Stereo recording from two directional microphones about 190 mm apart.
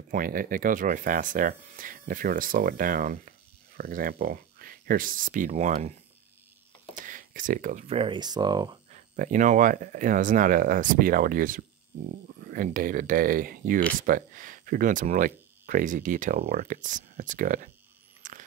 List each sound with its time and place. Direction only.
0.1 s speech: 45° right (ahead or behind)
7.0 s speech: 45° right (ahead or behind); by 8.7 s 20° right (ahead or behind)
8.9 s speech: 45° right (ahead or behind)
18.2 s biting: 40° right (ahead or behind)